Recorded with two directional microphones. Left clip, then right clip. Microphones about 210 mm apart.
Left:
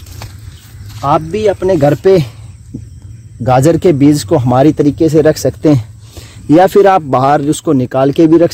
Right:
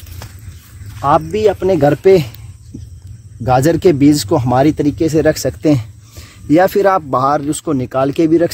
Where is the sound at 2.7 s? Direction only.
35° left (ahead or behind).